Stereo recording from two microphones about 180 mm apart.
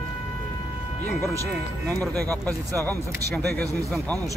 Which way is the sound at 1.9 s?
Centre (ahead or behind).